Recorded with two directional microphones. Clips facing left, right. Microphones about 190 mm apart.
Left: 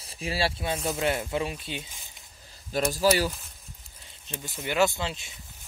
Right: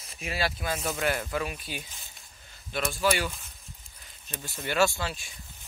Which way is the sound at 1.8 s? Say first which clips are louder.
Left 1 dB; 15° left (ahead or behind).